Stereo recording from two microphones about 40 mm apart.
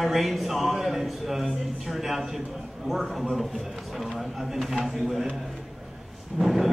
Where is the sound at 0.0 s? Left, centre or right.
Centre.